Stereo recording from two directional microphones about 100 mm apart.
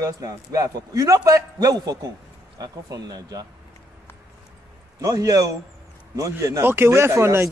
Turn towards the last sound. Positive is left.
turn(degrees=-25)  # may be behind; listen again after turning